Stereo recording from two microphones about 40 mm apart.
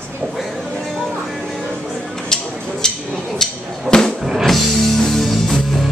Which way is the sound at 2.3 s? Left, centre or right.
Centre.